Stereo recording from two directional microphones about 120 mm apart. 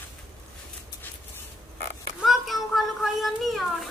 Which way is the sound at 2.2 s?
Centre (ahead or behind).